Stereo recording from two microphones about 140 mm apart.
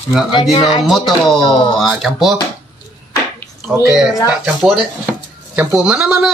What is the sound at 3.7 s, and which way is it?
A woman's voice, 10° right (ahead or behind).